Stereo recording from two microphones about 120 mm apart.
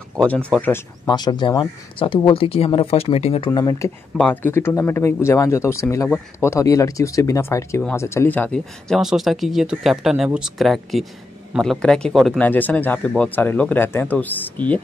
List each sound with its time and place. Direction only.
0.2 s speech: 10° left (ahead or behind)
1.0 s speech: 35° left (ahead or behind)
3.6 s speech: 25° left (ahead or behind)
4.2 s speech: 15° left (ahead or behind)
12.4 s speech: 15° left (ahead or behind)